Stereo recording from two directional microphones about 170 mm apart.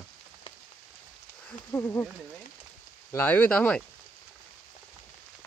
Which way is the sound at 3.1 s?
10° left (ahead or behind).